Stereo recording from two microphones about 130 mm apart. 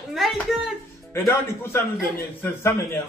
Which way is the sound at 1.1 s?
20° left (ahead or behind).